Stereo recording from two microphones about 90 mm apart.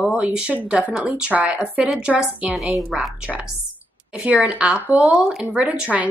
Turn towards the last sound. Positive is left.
turn(degrees=-15)  # may be behind; listen again after turning